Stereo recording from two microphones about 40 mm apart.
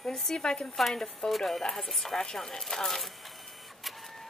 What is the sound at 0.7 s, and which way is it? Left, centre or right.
A woman's voice, centre.